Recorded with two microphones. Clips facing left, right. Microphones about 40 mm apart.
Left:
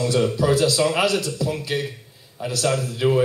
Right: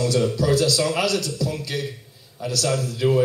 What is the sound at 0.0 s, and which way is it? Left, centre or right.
A man's voice, centre.